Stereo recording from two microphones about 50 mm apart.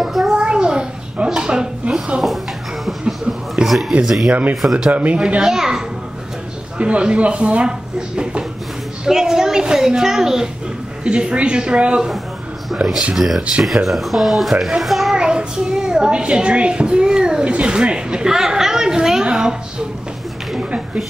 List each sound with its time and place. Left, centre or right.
0.0 s a sound: centre
0.3 s a sound: centre
2.8 s a sound: centre
3.6 s a sound: right
4.0 s speech: centre
4.3 s speech: right
5.2 s a child's voice: centre
9.0 s a child's voice: centre
11.1 s speech: right
13.1 s speech: centre
13.4 s speech: right
13.8 s speech: centre
14.8 s child singing: centre
15.1 s a child's voice: centre